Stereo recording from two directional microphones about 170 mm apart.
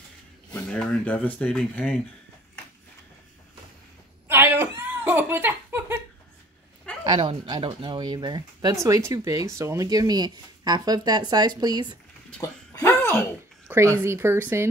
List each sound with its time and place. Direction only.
0.6 s speech: 5° left (ahead or behind)
4.3 s a sound: 15° right (ahead or behind)
7.1 s speech: 30° right (ahead or behind)
12.4 s speech: 15° left (ahead or behind)
13.9 s speech: 15° right (ahead or behind)